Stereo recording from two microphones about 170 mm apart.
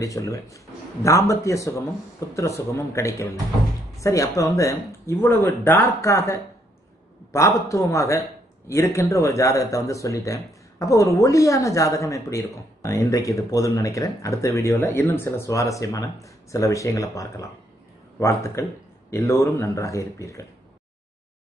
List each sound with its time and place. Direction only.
0.0 s a man's voice: 20° left (ahead or behind)